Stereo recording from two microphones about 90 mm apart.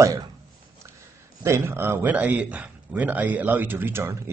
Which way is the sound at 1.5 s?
30° right (ahead or behind).